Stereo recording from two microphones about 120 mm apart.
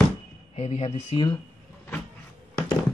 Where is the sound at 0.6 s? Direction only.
60° left (ahead or behind).